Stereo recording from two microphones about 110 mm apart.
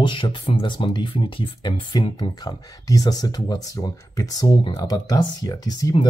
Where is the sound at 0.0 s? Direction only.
45° left (ahead or behind).